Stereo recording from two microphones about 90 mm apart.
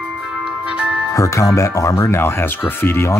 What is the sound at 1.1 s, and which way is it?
Speech, 35° left (ahead or behind).